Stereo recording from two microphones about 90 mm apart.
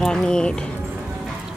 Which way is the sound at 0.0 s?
5° left (ahead or behind).